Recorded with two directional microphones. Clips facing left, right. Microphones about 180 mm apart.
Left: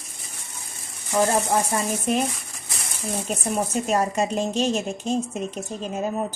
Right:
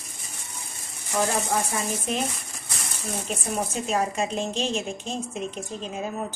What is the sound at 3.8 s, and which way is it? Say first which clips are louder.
Speech: left 2 dB; 40° left (ahead or behind).